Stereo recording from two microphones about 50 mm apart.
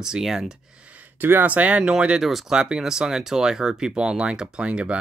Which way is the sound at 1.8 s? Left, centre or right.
Centre.